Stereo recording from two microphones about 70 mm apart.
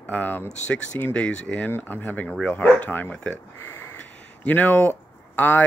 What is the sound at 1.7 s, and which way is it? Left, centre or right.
Speech, left.